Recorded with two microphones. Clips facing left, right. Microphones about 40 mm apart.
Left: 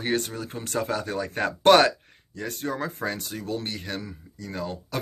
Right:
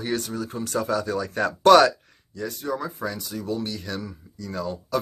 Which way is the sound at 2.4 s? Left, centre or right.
Left.